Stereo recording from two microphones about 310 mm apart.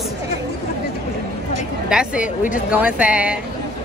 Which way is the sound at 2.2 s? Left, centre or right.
Left.